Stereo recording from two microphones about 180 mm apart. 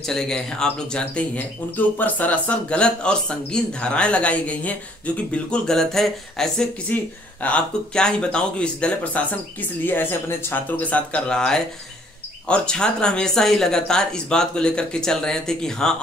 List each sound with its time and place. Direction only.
0.0 s speech: 5° left (ahead or behind)